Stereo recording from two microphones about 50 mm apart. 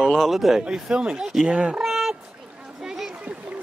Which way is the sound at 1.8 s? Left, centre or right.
Centre.